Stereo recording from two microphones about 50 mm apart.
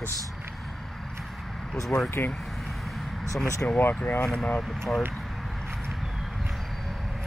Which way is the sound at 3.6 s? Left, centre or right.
Left.